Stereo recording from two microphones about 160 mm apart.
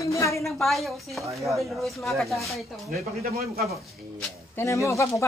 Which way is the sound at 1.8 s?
Centre (ahead or behind).